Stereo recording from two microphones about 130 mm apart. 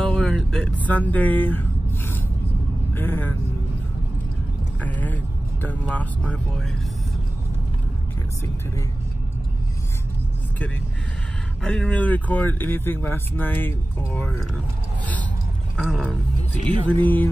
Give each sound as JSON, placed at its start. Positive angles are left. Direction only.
{"t": 0.0, "sound": "music", "side_deg": 5}
{"t": 2.9, "sound": "speech", "side_deg": 15}
{"t": 4.7, "sound": "speech", "side_deg": 10}
{"t": 11.6, "sound": "speech", "side_deg": 10}
{"t": 15.7, "sound": "speech", "side_deg": -5}
{"t": 16.8, "sound": "speech", "side_deg": 15}